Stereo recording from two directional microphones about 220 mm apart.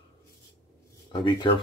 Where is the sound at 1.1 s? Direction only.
20° left (ahead or behind).